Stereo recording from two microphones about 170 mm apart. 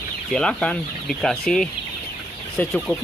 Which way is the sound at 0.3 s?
5° left (ahead or behind).